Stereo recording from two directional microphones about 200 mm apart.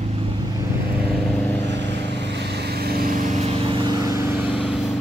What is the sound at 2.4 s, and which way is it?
Vehicle, 55° right (ahead or behind).